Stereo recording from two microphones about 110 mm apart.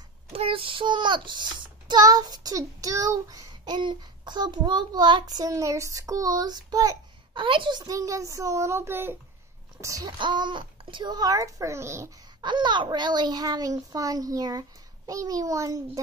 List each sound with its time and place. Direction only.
0.3 s a child's voice: 55° right (ahead or behind); by 7.4 s 35° right (ahead or behind)
7.4 s a child's voice: 50° right (ahead or behind); by 10.0 s 30° right (ahead or behind)
10.0 s a child's voice: 45° right (ahead or behind); by 12.1 s 25° right (ahead or behind)
12.4 s a child's voice: 45° right (ahead or behind)